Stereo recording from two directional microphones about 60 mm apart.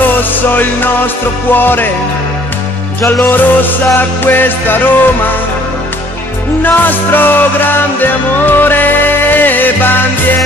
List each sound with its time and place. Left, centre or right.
0.6 s music: left
3.1 s music: left
6.6 s music: left